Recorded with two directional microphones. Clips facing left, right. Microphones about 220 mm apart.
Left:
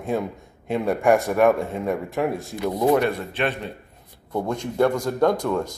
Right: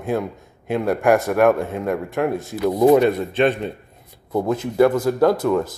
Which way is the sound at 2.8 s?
20° right (ahead or behind).